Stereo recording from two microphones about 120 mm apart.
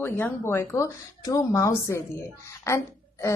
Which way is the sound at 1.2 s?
25° left (ahead or behind).